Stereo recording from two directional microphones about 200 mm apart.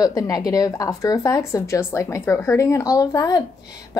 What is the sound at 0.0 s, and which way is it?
A woman's voice, 20° left (ahead or behind).